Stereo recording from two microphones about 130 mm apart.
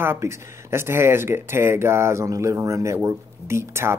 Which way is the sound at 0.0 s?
20° right (ahead or behind).